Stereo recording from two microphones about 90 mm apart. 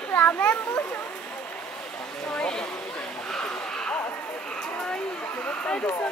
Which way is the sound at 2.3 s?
10° left (ahead or behind).